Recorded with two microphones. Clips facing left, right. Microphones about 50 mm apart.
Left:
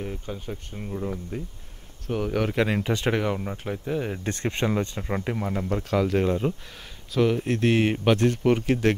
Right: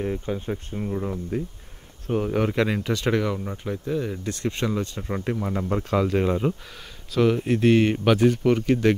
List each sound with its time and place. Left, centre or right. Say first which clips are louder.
0.0 s speech: right 6 dB; right
2.5 s speech: right 1 dB; centre
4.1 s speech: even; left
5.0 s speech: right 1 dB; centre
5.4 s speech: right 1 dB; centre
7.7 s speech: right 3 dB; centre
8.0 s speech: right 2 dB; centre